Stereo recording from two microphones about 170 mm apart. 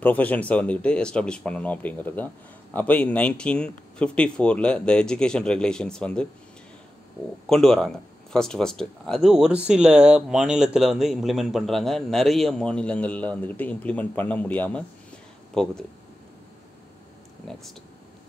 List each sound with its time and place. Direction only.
0.0 s speech: 10° left (ahead or behind)
7.4 s speech: 5° left (ahead or behind)